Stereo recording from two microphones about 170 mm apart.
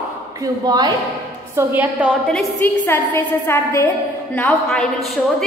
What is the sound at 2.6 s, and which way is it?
A woman's voice, 10° left (ahead or behind).